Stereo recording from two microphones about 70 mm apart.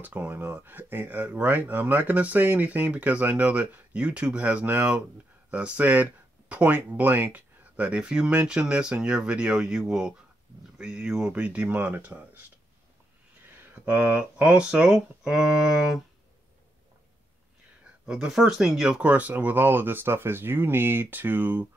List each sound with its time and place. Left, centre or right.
0.0 s speech: right
13.6 s speech: right; by 16.0 s centre
18.0 s speech: centre; by 21.6 s right